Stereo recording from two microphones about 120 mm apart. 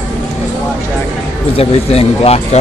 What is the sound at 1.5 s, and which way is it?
Speech, 55° left (ahead or behind).